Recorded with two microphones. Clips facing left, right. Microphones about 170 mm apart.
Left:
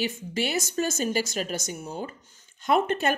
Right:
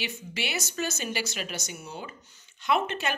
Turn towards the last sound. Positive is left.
turn(degrees=50)  # may be behind; listen again after turning